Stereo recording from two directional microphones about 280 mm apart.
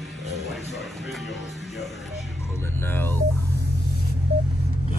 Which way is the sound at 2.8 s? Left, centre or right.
Centre.